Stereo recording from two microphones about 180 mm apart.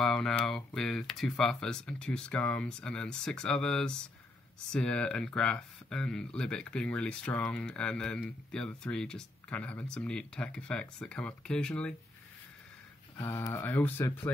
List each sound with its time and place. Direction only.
0.0 s speech: 5° left (ahead or behind)
13.1 s speech: 15° left (ahead or behind)